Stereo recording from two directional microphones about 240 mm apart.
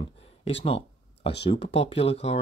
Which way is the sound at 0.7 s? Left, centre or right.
Left.